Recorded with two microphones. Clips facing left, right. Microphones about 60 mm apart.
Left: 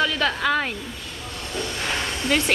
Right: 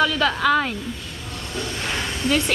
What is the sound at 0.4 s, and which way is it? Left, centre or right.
Speech, centre.